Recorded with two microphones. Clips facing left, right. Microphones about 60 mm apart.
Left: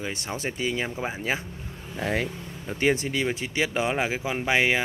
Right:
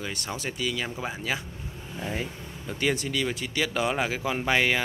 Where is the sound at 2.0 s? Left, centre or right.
Left.